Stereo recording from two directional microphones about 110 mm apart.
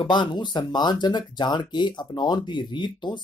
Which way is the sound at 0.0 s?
45° left (ahead or behind).